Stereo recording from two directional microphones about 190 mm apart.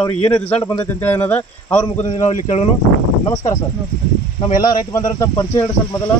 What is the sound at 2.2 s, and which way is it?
Speech, 35° left (ahead or behind).